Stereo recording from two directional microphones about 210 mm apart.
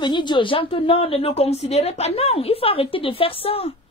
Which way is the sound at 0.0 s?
20° left (ahead or behind).